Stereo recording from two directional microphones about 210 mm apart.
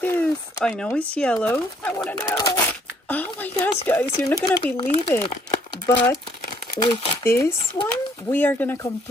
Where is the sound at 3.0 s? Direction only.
10° left (ahead or behind).